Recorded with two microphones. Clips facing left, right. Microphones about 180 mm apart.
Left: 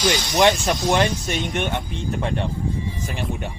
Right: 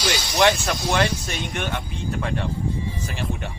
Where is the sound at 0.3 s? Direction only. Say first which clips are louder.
Left 1 dB; 20° left (ahead or behind).